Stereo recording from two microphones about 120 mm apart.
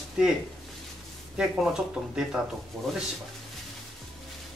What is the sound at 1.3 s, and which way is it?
Speech, 5° right (ahead or behind).